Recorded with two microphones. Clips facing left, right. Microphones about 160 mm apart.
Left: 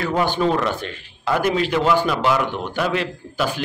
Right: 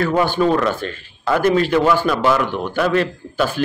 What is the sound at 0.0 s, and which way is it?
A man's voice, 15° left (ahead or behind).